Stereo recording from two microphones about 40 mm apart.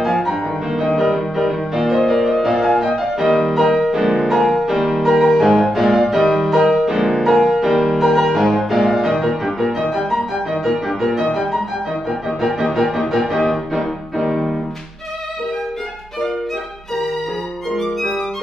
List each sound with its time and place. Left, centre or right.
0.0 s music: centre
3.9 s music: centre
12.4 s music: centre